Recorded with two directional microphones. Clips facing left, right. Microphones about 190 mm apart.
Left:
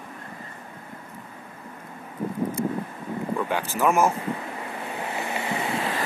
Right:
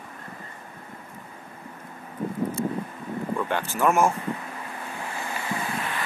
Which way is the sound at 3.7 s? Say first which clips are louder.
Even; 5° left (ahead or behind).